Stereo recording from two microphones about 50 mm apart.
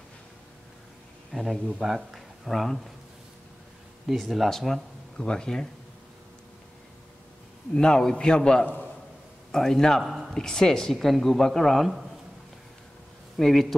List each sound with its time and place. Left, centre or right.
1.3 s speech: centre
4.1 s speech: centre
5.1 s speech: centre
7.7 s speech: centre
13.4 s speech: centre